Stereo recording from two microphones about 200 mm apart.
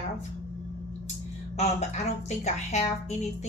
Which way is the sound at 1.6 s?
35° left (ahead or behind).